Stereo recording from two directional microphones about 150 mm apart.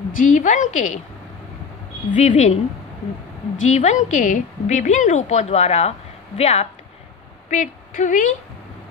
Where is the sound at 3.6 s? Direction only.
50° left (ahead or behind).